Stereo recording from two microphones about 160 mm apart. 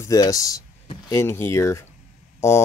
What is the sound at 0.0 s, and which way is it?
Speech, 20° left (ahead or behind).